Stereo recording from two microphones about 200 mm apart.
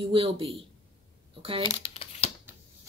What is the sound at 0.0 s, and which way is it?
Speech, 25° right (ahead or behind).